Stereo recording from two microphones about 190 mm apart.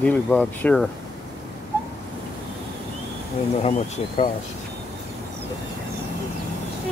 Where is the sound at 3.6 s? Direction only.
35° left (ahead or behind).